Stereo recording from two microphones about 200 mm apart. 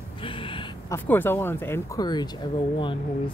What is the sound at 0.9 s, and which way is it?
Speech, 10° left (ahead or behind).